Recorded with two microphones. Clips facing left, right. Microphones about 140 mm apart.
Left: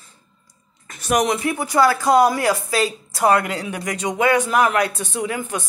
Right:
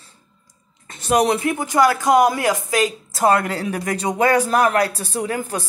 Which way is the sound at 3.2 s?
30° right (ahead or behind).